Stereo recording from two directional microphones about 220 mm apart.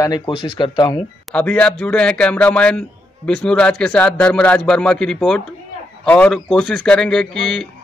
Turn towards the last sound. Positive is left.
turn(degrees=0)  # may be behind; listen again after turning